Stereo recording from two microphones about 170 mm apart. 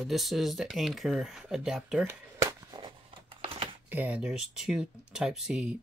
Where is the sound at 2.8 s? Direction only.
30° right (ahead or behind).